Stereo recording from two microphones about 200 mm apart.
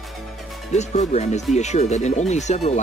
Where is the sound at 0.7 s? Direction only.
35° left (ahead or behind).